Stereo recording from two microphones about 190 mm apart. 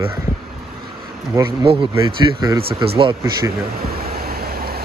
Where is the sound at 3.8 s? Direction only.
55° right (ahead or behind).